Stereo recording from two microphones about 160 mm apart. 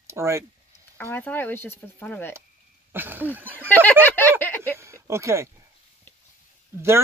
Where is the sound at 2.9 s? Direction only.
10° right (ahead or behind).